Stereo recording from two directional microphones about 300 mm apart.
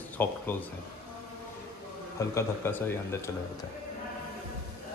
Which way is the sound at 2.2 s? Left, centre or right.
Centre.